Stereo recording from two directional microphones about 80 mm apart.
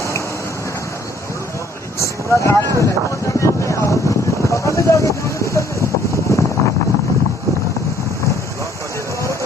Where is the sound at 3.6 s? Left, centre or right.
Left.